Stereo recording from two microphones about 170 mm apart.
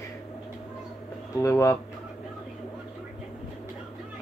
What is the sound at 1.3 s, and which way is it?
Speech, 20° left (ahead or behind).